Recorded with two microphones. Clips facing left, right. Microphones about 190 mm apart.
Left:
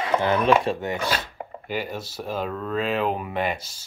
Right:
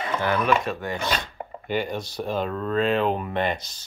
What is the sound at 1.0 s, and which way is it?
Speech, 5° left (ahead or behind).